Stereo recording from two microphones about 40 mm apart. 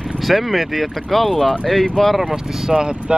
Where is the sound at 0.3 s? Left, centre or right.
Centre.